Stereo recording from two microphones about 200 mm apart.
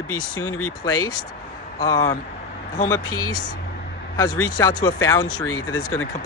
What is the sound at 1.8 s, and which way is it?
Speech, 20° left (ahead or behind).